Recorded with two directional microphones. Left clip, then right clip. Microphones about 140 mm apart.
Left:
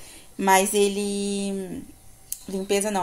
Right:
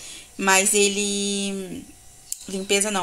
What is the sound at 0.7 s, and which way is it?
Speech, 5° left (ahead or behind).